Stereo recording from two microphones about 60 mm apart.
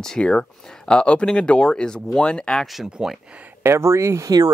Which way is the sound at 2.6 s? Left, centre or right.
Centre.